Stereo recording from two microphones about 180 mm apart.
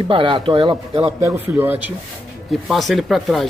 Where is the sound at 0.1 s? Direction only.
30° right (ahead or behind).